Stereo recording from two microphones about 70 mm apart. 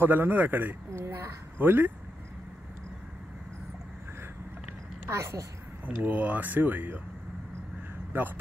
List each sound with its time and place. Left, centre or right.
0.0 s a man's voice: right
1.0 s speech: right
1.6 s a man's voice: right
5.0 s a child's voice: right
5.9 s a man's voice: right
8.1 s a man's voice: right